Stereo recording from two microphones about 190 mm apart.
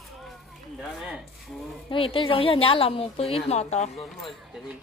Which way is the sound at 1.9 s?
30° left (ahead or behind).